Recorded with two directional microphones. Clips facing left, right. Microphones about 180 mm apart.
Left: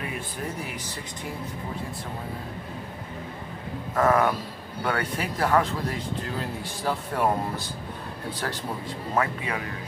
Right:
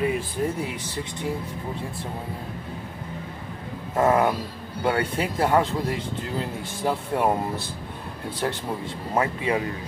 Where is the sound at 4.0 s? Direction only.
25° right (ahead or behind).